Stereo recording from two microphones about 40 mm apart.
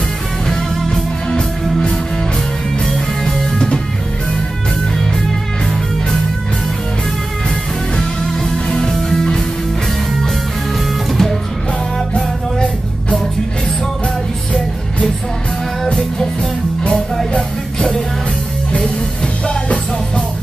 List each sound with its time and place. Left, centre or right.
0.5 s music: centre
2.9 s music: centre
3.5 s music: centre
8.3 s music: centre
11.1 s music: centre
19.4 s music: left